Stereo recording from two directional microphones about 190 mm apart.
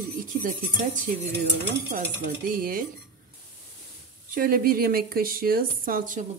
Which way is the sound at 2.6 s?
50° right (ahead or behind).